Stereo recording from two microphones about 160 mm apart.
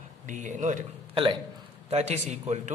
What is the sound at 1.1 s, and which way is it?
Speech, 30° right (ahead or behind).